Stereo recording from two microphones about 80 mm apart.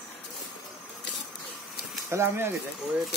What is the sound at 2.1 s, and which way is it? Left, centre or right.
Speech, right.